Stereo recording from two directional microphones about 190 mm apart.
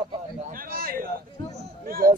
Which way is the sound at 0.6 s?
50° right (ahead or behind).